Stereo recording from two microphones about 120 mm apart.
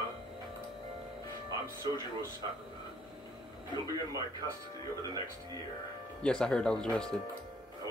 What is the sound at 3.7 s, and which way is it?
Speech, 30° left (ahead or behind).